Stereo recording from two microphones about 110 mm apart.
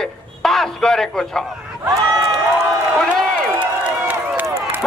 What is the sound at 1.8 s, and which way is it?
Run, 35° right (ahead or behind).